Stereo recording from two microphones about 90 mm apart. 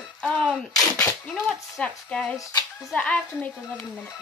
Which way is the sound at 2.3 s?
40° left (ahead or behind).